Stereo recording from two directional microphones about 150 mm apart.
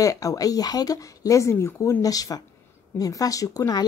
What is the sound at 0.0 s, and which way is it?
Speech, 20° left (ahead or behind).